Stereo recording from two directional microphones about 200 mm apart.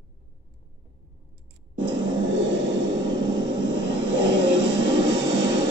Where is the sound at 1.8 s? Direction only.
65° right (ahead or behind).